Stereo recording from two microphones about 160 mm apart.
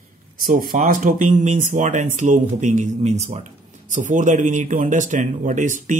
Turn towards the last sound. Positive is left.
turn(degrees=-55)  # may be behind; listen again after turning